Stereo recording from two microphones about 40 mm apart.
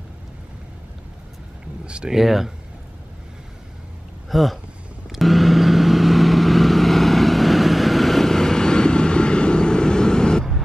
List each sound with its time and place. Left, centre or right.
1.9 s speech: right
2.1 s speech: centre
4.3 s speech: centre
5.1 s vehicle: centre